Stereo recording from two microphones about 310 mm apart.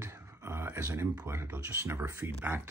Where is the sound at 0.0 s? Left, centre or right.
Centre.